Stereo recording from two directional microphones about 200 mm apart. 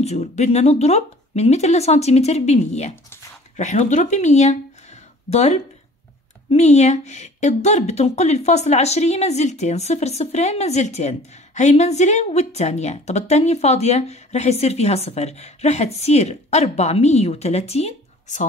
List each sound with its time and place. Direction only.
0.0 s speech: 35° left (ahead or behind)